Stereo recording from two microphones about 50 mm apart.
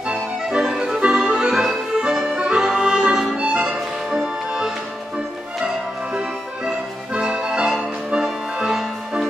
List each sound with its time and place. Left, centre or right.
0.1 s music: centre
0.7 s accordion: centre
3.3 s music: right
7.2 s music: centre
8.7 s music: centre